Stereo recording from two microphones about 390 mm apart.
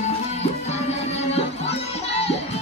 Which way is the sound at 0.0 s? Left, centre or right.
Centre.